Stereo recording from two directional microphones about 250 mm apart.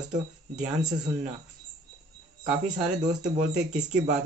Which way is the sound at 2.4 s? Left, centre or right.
Right.